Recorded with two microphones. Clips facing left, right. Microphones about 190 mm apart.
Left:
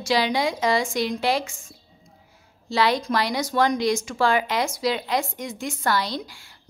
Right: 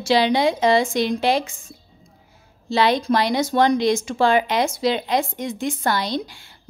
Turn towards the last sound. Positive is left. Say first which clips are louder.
# right 5 dB
turn(degrees=-20)  # may be behind; listen again after turning